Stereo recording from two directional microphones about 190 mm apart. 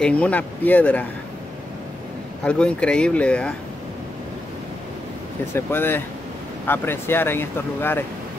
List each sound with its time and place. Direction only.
0.0 s speech: 5° left (ahead or behind)
2.4 s speech: 5° left (ahead or behind)
5.5 s speech: 10° left (ahead or behind)